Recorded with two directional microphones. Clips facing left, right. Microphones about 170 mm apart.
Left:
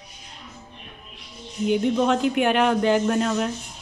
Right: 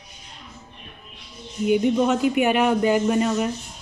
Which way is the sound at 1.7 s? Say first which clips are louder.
Right 1 dB; 5° right (ahead or behind).